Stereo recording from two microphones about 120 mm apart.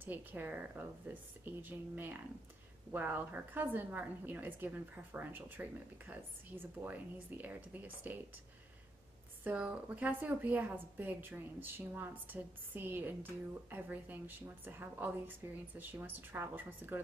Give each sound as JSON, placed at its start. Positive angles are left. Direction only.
{"t": 0.0, "sound": "a woman's voice", "side_deg": -15}
{"t": 9.4, "sound": "a woman's voice", "side_deg": -10}